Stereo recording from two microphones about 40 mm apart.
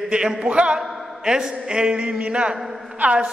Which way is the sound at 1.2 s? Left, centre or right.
Centre.